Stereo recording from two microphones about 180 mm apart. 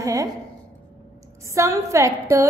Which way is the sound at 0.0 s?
20° right (ahead or behind).